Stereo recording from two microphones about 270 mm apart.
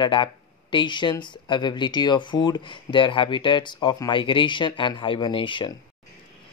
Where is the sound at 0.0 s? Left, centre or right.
Centre.